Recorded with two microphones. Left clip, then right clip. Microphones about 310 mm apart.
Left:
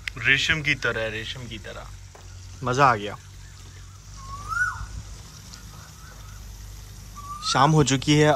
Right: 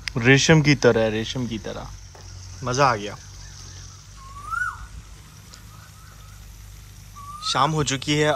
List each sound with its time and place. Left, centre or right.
0.0 s speech: centre
2.6 s speech: centre
7.3 s speech: centre